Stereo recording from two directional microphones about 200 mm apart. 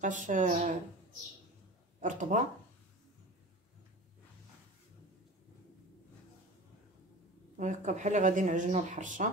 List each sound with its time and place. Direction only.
0.0 s speech: 40° right (ahead or behind)
2.0 s speech: 40° right (ahead or behind)
7.5 s speech: 40° right (ahead or behind)